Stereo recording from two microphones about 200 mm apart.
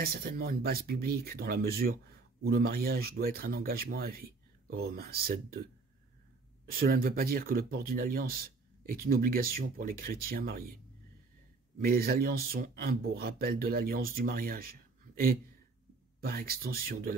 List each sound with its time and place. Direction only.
0.0 s speech: 50° right (ahead or behind)
11.8 s speech: 50° right (ahead or behind)